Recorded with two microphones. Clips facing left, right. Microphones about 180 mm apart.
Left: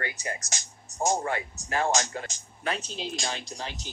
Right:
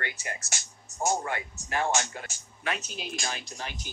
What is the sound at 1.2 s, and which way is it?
Speech, 30° left (ahead or behind).